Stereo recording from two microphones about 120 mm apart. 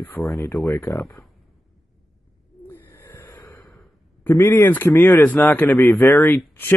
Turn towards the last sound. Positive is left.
turn(degrees=15)  # may be behind; listen again after turning